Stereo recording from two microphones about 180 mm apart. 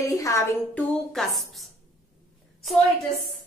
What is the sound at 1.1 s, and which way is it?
Speech, centre (ahead or behind).